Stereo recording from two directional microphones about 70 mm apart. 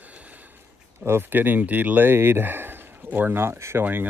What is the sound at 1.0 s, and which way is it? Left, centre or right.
Speech, right.